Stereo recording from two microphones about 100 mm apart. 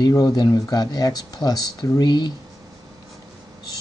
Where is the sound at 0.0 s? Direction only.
40° left (ahead or behind).